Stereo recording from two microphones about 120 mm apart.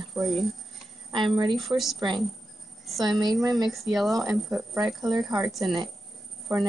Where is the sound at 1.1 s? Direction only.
40° right (ahead or behind).